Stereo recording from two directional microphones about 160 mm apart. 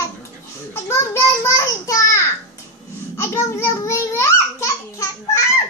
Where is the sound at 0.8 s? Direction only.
20° left (ahead or behind).